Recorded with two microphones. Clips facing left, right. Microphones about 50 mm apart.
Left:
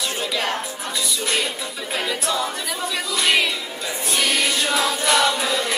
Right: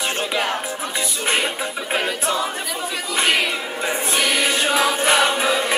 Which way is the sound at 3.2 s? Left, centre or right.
Right.